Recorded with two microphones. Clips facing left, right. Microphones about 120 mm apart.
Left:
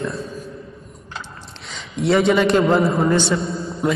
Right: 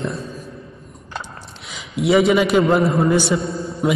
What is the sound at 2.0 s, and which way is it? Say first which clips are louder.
A man's voice: right 1 dB; 5° right (ahead or behind).